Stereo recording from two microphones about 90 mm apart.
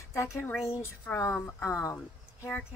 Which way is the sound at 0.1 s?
35° left (ahead or behind).